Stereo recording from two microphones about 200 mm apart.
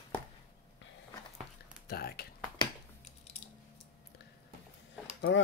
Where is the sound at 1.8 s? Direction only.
50° left (ahead or behind).